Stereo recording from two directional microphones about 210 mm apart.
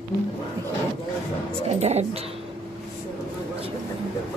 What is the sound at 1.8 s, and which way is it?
Speech, 30° right (ahead or behind).